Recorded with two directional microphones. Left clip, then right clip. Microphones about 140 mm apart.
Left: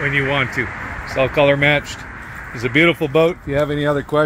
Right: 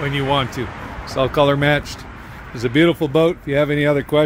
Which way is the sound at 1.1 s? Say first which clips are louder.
Left 1 dB; 40° right (ahead or behind).